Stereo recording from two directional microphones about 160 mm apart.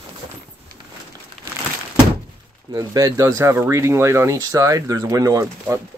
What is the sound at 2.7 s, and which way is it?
Speech, 25° right (ahead or behind).